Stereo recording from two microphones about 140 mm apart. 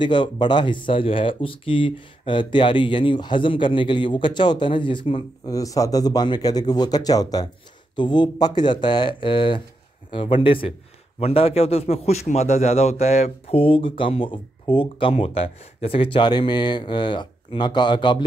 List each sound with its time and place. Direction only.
0.0 s a man's voice: 35° left (ahead or behind)
5.5 s a man's voice: 25° left (ahead or behind)